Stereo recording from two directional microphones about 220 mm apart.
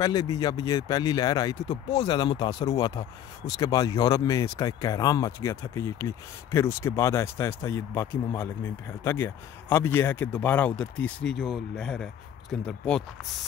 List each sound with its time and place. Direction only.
0.0 s speech: 15° left (ahead or behind)